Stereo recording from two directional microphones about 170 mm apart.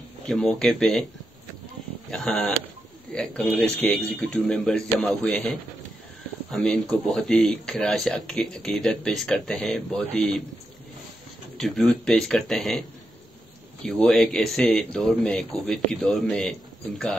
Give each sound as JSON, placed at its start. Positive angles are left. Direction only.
{"t": 0.3, "sound": "speech", "side_deg": 0}
{"t": 2.0, "sound": "speech", "side_deg": 5}
{"t": 11.6, "sound": "speech", "side_deg": 0}
{"t": 13.8, "sound": "speech", "side_deg": 5}